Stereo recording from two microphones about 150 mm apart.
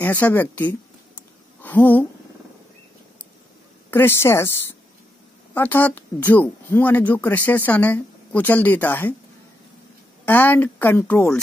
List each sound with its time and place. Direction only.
0.0 s speech: 10° left (ahead or behind)
3.9 s speech: 15° left (ahead or behind)
5.5 s speech: 10° left (ahead or behind)
10.2 s speech: 10° left (ahead or behind)